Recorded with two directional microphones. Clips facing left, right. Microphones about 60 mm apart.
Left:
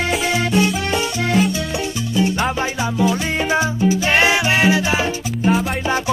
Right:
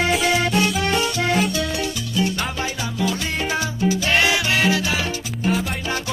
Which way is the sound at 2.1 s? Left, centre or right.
Left.